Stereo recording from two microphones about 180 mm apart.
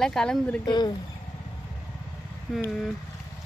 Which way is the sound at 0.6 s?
25° left (ahead or behind).